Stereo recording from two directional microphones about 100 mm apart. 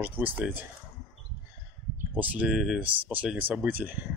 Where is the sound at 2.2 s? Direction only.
15° right (ahead or behind).